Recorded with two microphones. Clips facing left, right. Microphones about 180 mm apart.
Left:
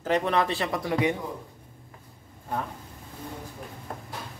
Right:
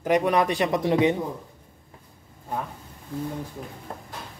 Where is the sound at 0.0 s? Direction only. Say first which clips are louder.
Right 3 dB; 15° right (ahead or behind).